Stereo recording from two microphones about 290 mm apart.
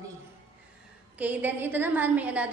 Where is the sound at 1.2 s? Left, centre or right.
Centre.